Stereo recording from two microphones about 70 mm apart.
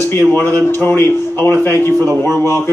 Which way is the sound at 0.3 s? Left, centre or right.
Left.